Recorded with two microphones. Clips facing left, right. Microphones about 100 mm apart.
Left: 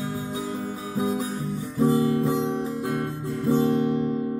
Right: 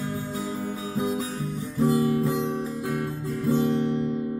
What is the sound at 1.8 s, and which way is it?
Guitar, 20° left (ahead or behind).